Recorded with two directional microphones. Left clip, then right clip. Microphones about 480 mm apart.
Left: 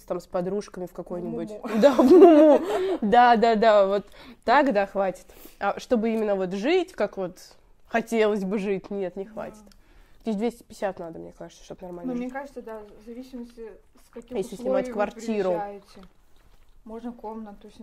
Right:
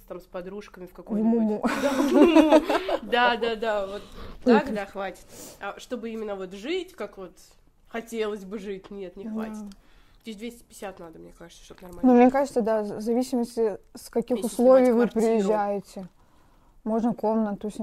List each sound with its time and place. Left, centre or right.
0.1 s speech: centre
1.5 s speech: right
2.2 s speech: centre
12.2 s a woman's voice: right
14.3 s speech: centre
15.4 s speech: right